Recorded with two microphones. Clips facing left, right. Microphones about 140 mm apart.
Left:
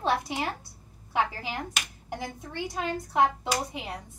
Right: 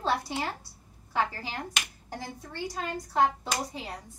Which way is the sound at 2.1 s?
20° left (ahead or behind).